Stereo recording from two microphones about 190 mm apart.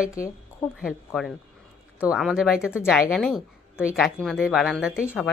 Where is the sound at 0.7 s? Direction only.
Centre (ahead or behind).